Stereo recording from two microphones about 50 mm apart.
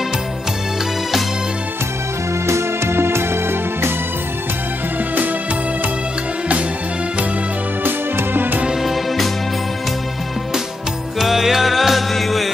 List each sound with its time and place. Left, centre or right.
2.4 s music: right
7.8 s music: right
8.8 s music: centre
11.1 s music: centre